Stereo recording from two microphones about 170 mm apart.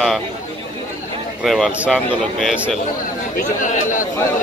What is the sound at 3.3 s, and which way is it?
Speech, 50° left (ahead or behind).